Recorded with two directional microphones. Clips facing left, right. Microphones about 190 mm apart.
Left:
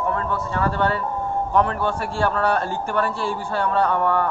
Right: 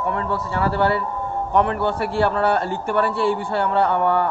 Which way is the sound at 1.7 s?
65° right (ahead or behind).